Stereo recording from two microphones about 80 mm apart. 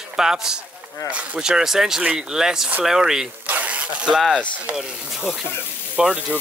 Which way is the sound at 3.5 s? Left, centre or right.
Centre.